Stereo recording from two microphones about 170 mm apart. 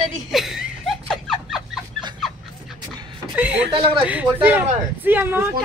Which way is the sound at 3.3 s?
10° right (ahead or behind).